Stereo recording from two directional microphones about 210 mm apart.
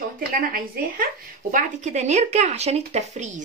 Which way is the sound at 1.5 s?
35° right (ahead or behind).